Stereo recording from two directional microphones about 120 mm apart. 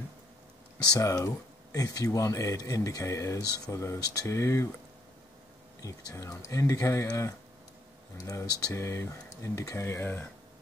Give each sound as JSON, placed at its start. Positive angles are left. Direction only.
{"t": 0.9, "sound": "speech", "side_deg": 25}
{"t": 5.8, "sound": "speech", "side_deg": 25}
{"t": 8.7, "sound": "speech", "side_deg": 25}